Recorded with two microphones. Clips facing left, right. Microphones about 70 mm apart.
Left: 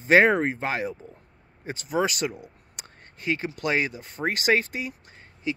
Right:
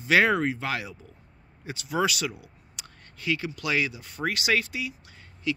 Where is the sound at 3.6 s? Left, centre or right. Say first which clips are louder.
Left 2 dB; left.